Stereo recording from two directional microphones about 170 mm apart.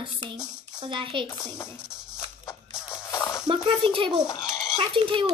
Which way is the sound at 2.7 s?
15° left (ahead or behind).